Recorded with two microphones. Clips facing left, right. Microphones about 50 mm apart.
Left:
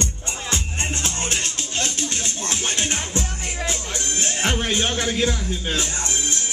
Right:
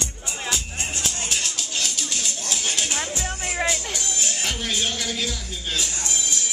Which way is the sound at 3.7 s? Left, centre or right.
Left.